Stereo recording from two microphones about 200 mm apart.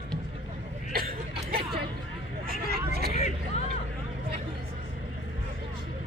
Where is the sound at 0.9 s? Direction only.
50° right (ahead or behind).